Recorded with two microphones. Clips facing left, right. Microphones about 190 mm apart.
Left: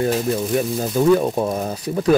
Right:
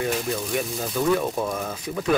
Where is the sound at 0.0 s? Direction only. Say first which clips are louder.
Left 6 dB; 40° left (ahead or behind).